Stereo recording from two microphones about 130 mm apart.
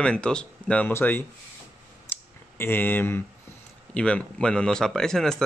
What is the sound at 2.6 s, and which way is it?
A man's voice, 15° left (ahead or behind).